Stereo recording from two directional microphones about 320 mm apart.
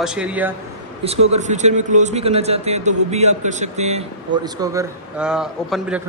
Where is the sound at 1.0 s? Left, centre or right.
Centre.